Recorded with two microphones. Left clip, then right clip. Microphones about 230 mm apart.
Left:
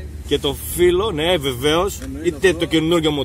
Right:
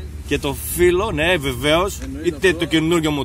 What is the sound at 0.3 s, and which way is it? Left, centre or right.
A man's voice, right.